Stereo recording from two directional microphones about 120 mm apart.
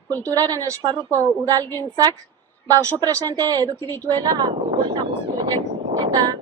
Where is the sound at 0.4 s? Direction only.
30° right (ahead or behind).